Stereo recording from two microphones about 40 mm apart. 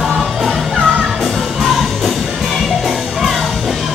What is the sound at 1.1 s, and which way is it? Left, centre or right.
Music, centre.